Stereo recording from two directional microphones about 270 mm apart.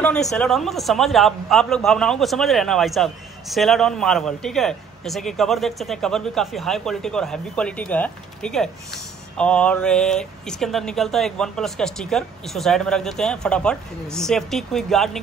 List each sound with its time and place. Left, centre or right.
0.0 s a man's voice: centre